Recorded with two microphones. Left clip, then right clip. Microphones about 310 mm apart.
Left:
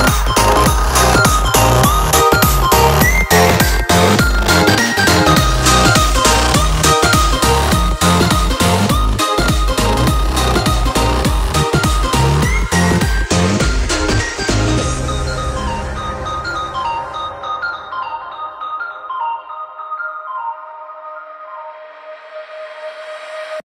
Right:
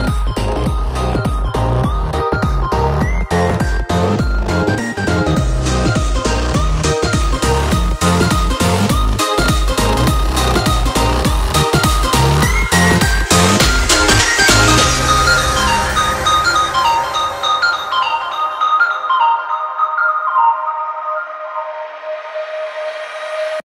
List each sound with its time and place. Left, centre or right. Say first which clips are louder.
0.4 s music: left 9 dB; left; by 18.0 s right